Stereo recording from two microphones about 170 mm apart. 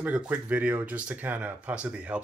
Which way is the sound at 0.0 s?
10° right (ahead or behind).